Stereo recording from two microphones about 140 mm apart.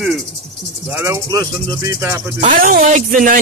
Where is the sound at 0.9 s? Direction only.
15° right (ahead or behind).